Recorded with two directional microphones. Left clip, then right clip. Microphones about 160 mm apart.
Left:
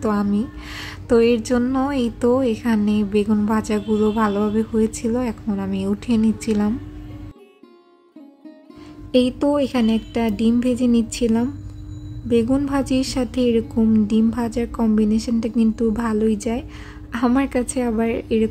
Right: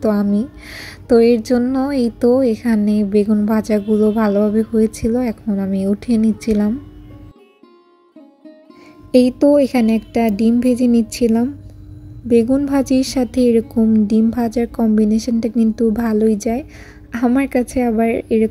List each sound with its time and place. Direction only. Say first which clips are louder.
0.0 s a woman's voice: right 4 dB; 20° right (ahead or behind)
9.1 s a woman's voice: right 6 dB; 25° right (ahead or behind)
12.7 s a woman's voice: right 5 dB; 25° right (ahead or behind)